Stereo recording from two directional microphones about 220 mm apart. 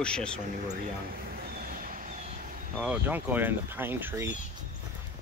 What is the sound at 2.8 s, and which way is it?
Speech, 5° right (ahead or behind).